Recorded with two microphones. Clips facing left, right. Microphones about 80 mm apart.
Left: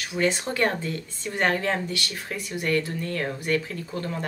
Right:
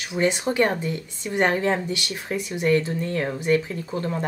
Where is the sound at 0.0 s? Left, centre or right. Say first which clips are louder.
Right 2 dB; centre.